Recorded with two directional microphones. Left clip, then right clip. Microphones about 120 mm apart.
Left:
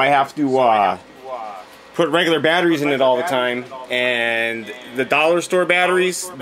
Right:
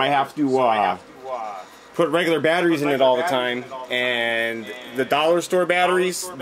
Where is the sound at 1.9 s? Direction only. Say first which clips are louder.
Left 3 dB; 15° left (ahead or behind).